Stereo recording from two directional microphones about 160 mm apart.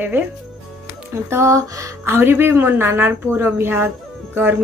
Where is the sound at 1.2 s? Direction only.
15° right (ahead or behind).